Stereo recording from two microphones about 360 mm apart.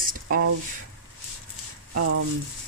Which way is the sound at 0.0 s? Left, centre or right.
Right.